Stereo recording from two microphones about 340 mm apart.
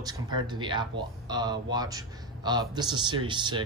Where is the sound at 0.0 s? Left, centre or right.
Centre.